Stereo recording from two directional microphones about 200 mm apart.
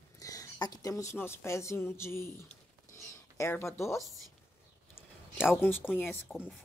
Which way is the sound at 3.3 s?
15° left (ahead or behind).